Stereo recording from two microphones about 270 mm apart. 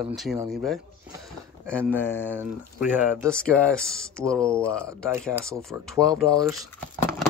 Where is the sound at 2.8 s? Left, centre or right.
Centre.